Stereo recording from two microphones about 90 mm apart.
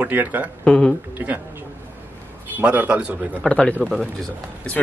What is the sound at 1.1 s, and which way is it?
Speech, 20° right (ahead or behind).